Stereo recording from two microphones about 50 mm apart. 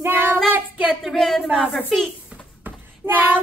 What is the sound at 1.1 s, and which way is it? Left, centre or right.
Female singing, centre.